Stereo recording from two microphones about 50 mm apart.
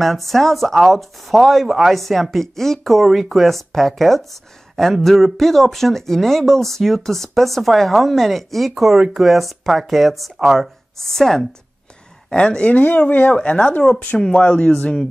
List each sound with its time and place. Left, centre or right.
0.0 s speech: centre
11.0 s speech: centre
12.3 s speech: centre
13.1 s speech: left
13.4 s speech: left
13.9 s speech: centre
14.4 s speech: left